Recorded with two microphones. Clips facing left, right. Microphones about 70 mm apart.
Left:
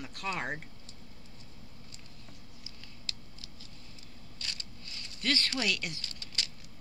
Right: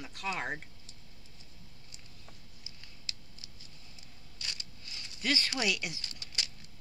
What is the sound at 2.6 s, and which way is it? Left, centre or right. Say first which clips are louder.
Patter: left 2 dB; centre.